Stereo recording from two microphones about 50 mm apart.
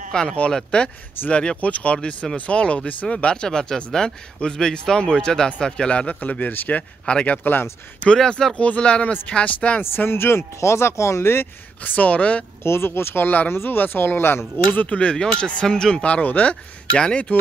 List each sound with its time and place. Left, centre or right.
0.1 s speech: centre; by 6.8 s left
7.1 s speech: left
8.2 s speech: centre
8.5 s speech: left
9.8 s speech: left
11.8 s speech: left
12.6 s speech: left
14.9 s speech: left